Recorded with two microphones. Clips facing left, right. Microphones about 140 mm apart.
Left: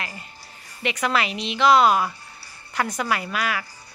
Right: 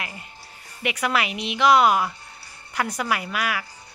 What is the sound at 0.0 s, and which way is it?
A woman's voice, 15° right (ahead or behind).